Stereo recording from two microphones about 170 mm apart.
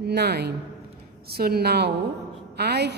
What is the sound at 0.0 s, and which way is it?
A man's voice, 75° right (ahead or behind).